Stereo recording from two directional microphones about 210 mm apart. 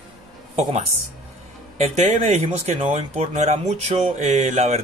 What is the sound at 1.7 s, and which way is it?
A man's voice, 35° right (ahead or behind).